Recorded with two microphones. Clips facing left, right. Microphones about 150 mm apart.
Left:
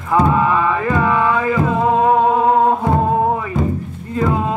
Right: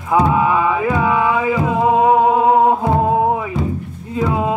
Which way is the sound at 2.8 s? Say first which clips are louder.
Right 1 dB; 10° right (ahead or behind).